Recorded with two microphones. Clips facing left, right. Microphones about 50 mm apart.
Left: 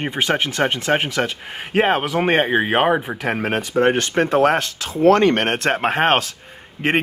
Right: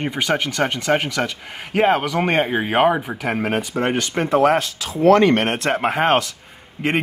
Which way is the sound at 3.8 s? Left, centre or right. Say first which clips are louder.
Left 7 dB; left.